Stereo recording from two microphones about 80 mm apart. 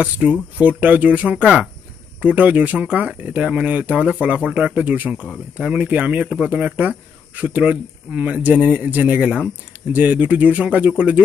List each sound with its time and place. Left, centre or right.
0.0 s speech: centre